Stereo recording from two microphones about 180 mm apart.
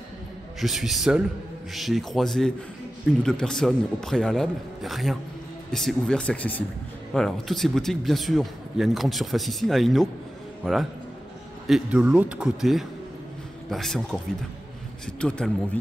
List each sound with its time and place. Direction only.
0.6 s a man's voice: centre (ahead or behind)